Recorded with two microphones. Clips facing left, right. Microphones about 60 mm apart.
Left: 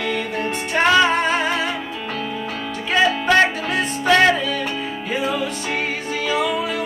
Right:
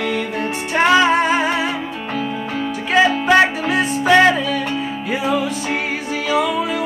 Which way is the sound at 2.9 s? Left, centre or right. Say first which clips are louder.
Right 3 dB; centre.